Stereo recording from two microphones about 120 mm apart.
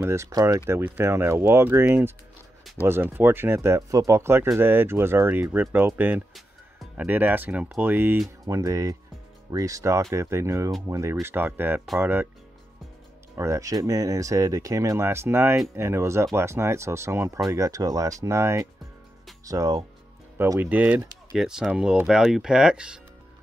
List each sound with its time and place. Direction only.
0.0 s speech: 25° right (ahead or behind)
0.7 s speech: 20° right (ahead or behind)
8.5 s speech: 25° right (ahead or behind)
13.4 s speech: 25° right (ahead or behind)
20.5 s speech: 15° right (ahead or behind)